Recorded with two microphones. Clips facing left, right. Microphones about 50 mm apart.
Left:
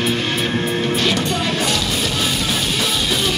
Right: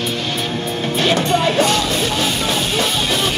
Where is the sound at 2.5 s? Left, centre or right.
Centre.